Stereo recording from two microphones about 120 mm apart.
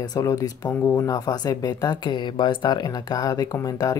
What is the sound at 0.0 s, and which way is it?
Speech, 30° left (ahead or behind).